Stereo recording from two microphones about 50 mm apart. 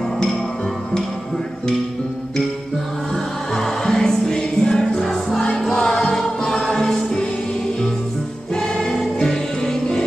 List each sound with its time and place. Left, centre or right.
3.5 s music: centre
4.9 s music: centre